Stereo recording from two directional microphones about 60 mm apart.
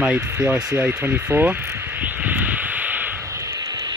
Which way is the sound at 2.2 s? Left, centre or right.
Right.